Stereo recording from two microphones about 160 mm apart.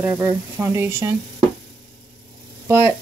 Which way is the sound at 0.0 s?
10° right (ahead or behind).